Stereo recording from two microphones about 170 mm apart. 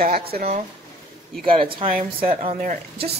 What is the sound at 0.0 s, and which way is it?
Speech, 65° right (ahead or behind).